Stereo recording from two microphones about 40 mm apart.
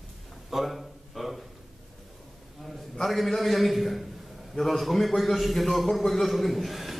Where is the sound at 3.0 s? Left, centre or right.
Centre.